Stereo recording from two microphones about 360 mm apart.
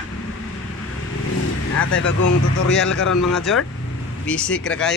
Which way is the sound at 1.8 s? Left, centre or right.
Left.